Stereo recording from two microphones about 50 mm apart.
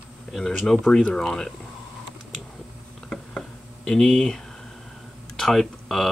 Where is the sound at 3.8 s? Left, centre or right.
Centre.